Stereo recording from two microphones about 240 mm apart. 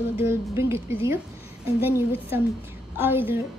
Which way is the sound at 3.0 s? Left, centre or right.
Centre.